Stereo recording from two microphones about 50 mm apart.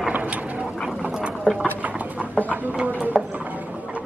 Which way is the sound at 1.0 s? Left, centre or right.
Right.